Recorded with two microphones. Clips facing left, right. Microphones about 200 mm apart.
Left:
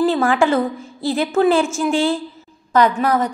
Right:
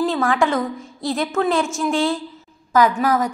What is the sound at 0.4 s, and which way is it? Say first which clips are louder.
Speech: left 3 dB; 30° left (ahead or behind).